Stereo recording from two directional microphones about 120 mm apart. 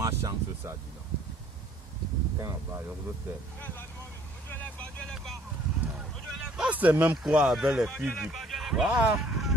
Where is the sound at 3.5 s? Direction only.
15° left (ahead or behind).